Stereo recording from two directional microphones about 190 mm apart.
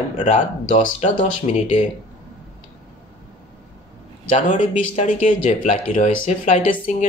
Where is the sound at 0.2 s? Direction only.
40° left (ahead or behind).